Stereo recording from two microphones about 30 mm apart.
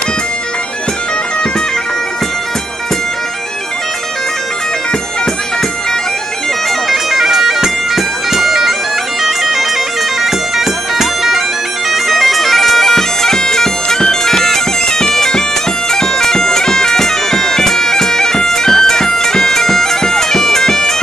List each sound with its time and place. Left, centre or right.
6.9 s bagpipes: centre
12.1 s bagpipes: centre